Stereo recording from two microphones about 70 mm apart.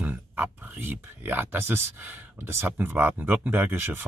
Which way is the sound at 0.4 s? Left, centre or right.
Right.